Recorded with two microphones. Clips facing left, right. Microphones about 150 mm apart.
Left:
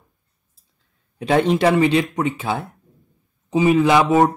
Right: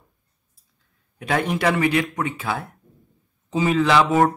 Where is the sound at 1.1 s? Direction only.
25° left (ahead or behind).